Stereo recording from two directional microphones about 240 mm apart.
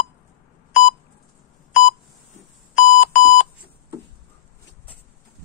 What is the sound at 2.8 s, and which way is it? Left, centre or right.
Alarm clock, left.